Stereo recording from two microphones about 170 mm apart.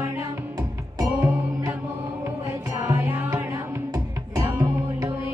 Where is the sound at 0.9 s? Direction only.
20° right (ahead or behind).